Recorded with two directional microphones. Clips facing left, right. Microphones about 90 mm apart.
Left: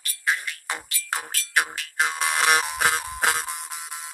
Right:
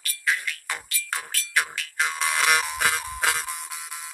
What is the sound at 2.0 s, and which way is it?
Music, 40° left (ahead or behind).